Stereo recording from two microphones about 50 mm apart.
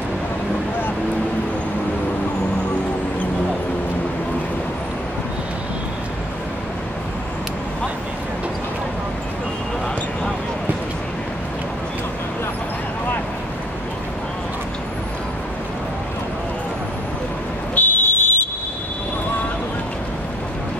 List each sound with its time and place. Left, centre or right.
17.7 s vehicle: left